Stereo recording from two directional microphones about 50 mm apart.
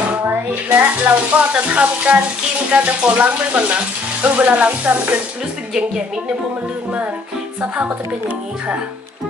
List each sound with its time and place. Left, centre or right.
0.7 s frying: right
7.6 s frying: right